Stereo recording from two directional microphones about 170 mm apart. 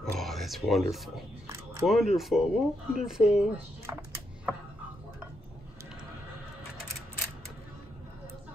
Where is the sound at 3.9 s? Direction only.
20° right (ahead or behind).